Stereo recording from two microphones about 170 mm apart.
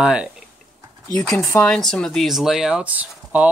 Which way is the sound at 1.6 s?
5° left (ahead or behind).